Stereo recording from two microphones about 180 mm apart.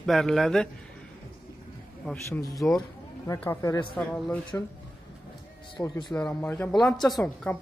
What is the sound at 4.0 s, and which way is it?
Speech, centre (ahead or behind).